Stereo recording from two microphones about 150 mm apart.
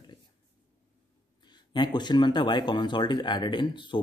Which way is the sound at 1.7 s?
30° left (ahead or behind).